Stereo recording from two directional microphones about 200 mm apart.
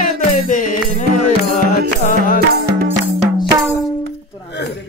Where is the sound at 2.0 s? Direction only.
40° left (ahead or behind).